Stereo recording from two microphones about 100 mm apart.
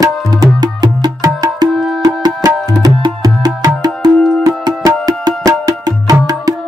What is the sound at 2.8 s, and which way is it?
Music, 40° right (ahead or behind).